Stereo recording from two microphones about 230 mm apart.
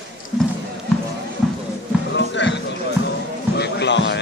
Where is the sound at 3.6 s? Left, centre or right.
Left.